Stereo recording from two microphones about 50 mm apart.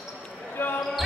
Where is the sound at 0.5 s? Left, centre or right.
Left.